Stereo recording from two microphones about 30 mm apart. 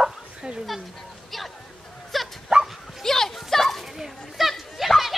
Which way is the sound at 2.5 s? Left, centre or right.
Right.